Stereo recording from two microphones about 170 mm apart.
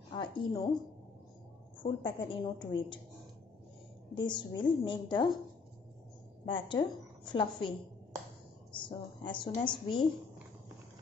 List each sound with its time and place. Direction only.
0.1 s a woman's voice: 25° left (ahead or behind)
1.8 s a woman's voice: 30° left (ahead or behind)
4.1 s a woman's voice: 25° left (ahead or behind)
6.4 s a woman's voice: 30° left (ahead or behind)
8.8 s a woman's voice: 30° left (ahead or behind)